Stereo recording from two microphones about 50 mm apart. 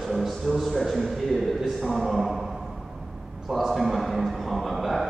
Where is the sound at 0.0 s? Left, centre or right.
Centre.